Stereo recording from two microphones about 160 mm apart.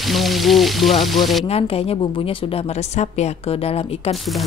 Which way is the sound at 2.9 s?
45° left (ahead or behind).